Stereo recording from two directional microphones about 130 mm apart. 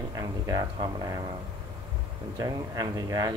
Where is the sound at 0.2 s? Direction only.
30° right (ahead or behind).